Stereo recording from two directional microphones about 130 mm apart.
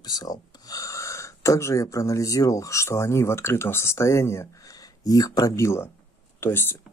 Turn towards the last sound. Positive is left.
turn(degrees=20)  # may be behind; listen again after turning